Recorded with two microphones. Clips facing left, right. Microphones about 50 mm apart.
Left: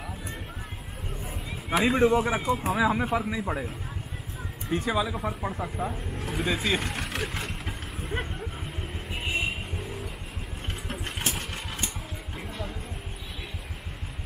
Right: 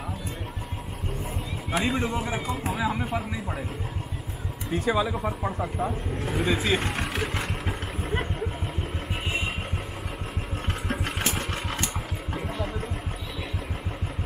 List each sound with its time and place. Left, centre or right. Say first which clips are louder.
1.7 s a man's voice: left 5 dB; centre
4.6 s a man's voice: right 2 dB; centre
6.8 s vehicle: right 3 dB; right
8.0 s vehicle: right 3 dB; centre
10.9 s engine: right 3 dB; right